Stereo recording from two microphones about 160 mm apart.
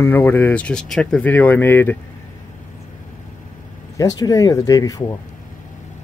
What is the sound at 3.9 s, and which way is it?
Speech, 20° left (ahead or behind).